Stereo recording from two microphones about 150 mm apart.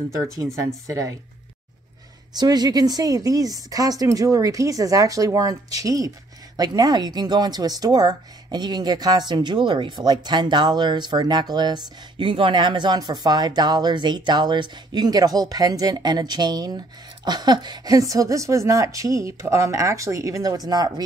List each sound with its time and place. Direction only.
0.6 s speech: 20° right (ahead or behind)
2.3 s speech: 25° right (ahead or behind)